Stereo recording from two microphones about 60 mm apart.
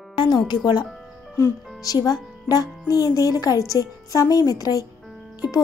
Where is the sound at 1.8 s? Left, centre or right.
Left.